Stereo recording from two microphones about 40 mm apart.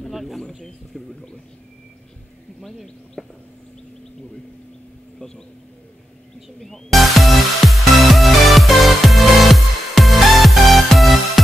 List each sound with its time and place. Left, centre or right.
0.0 s bird: centre
0.9 s speech: centre
2.6 s speech: centre
6.6 s music: centre